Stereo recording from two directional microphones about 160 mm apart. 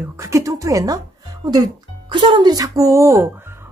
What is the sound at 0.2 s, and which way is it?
Speech, 20° right (ahead or behind).